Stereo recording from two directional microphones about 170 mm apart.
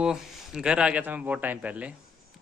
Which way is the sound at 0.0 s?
5° right (ahead or behind).